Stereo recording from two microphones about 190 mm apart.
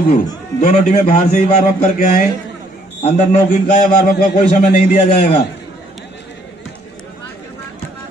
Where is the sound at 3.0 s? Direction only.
35° left (ahead or behind); by 4.3 s 55° left (ahead or behind).